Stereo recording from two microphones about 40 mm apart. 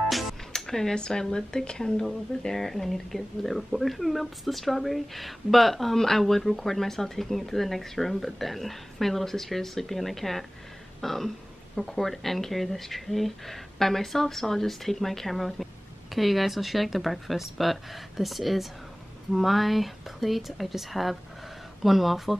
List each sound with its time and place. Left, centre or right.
0.1 s music: centre
0.7 s speech: centre
0.9 s speech: left; by 22.4 s centre